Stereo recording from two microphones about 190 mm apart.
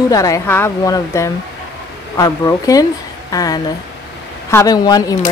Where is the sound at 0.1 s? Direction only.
20° left (ahead or behind).